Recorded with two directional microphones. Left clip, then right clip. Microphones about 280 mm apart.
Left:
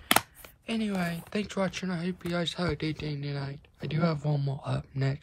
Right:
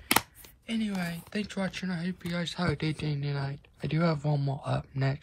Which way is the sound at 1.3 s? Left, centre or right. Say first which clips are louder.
Left 3 dB; centre.